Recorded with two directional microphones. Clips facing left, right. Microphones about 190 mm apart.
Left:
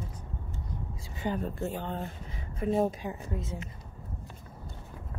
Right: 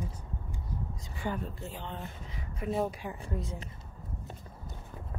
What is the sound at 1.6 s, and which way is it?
Speech, 45° left (ahead or behind).